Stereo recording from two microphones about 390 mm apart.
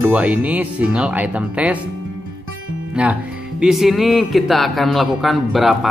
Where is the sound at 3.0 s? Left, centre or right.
Centre.